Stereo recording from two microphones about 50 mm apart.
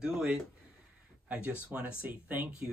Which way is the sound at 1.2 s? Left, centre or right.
Right.